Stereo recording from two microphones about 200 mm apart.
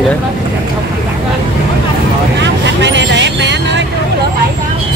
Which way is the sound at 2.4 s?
65° right (ahead or behind).